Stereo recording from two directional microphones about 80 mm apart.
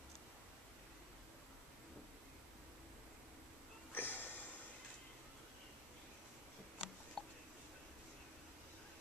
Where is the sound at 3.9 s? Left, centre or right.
Left.